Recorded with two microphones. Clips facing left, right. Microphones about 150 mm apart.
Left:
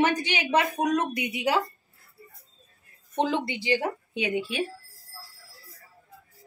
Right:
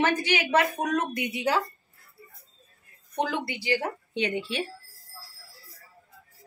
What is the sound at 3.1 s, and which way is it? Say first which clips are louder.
Speech: left 3 dB; 20° left (ahead or behind).